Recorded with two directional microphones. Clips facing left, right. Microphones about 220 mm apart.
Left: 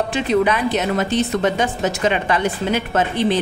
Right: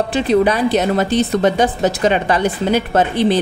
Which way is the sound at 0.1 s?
35° right (ahead or behind).